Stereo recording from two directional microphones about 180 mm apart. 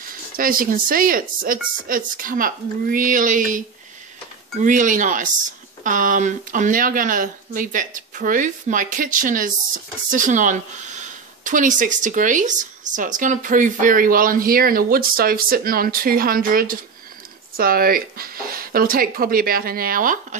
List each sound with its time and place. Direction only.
0.4 s speech: 50° right (ahead or behind)